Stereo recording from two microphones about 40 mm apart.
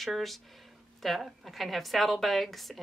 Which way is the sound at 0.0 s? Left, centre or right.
Centre.